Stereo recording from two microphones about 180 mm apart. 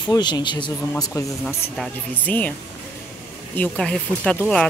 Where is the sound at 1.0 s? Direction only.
15° left (ahead or behind).